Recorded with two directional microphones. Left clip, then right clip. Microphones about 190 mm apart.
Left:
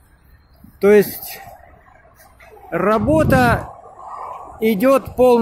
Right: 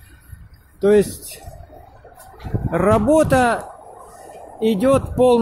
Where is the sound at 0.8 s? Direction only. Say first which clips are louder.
Left 3 dB; 10° left (ahead or behind).